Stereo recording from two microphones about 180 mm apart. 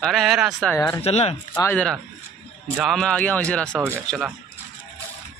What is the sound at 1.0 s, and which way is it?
Speech, 35° left (ahead or behind).